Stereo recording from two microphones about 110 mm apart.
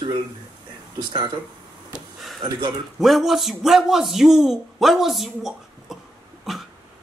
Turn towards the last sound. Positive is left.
turn(degrees=0)  # may be behind; listen again after turning